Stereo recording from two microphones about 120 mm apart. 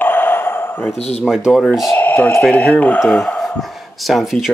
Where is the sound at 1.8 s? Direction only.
20° left (ahead or behind).